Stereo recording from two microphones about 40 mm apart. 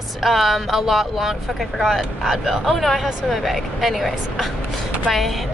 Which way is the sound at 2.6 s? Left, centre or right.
Centre.